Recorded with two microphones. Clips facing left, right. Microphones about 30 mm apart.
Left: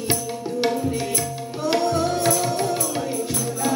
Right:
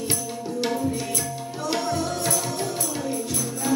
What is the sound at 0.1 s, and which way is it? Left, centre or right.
Music, left.